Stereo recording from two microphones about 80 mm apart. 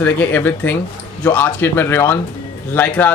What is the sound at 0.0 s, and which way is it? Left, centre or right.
A man's voice, left.